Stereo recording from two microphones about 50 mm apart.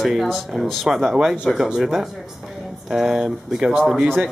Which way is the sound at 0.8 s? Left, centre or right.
Centre.